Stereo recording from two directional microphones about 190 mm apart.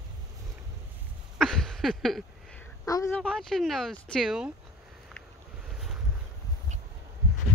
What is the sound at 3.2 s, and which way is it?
Speech, 5° left (ahead or behind).